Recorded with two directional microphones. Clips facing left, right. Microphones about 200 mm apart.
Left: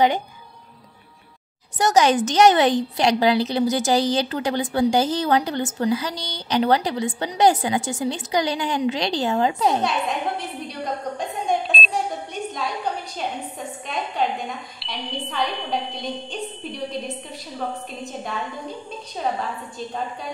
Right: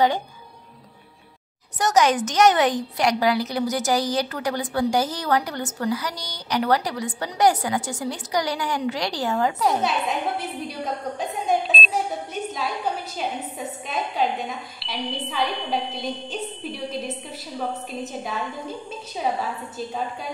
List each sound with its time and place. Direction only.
1.8 s a woman's voice: 30° left (ahead or behind)
9.8 s a woman's voice: 5° right (ahead or behind)
14.2 s a woman's voice: 5° right (ahead or behind)